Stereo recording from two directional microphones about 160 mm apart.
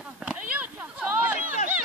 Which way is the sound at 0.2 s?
10° right (ahead or behind).